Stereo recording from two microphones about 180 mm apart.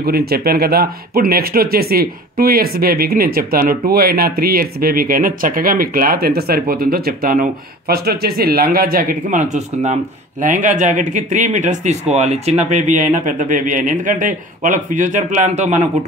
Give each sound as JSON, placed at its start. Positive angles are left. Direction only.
{"t": 0.0, "sound": "speech", "side_deg": -60}